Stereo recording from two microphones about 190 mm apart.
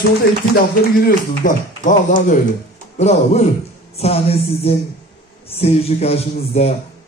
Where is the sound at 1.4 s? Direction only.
45° left (ahead or behind).